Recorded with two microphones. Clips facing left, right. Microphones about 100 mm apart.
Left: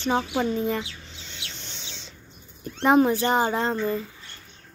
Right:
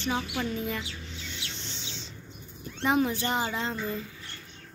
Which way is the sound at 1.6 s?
55° left (ahead or behind).